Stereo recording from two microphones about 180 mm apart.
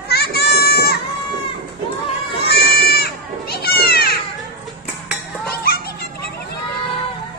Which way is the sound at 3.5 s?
60° left (ahead or behind).